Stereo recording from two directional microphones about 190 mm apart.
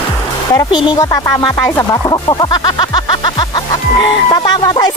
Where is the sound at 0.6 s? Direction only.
25° left (ahead or behind).